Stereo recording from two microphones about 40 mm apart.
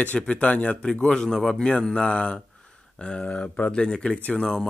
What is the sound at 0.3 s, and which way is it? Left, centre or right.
Speech, left.